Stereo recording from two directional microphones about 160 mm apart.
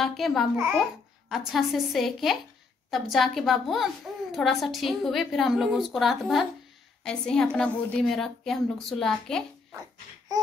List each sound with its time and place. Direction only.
0.0 s a woman's voice: centre (ahead or behind)